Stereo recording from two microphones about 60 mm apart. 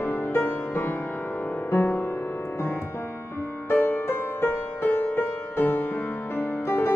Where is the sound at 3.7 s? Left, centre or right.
Left.